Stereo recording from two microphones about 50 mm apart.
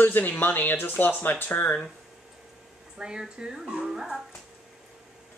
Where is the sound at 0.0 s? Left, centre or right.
Left.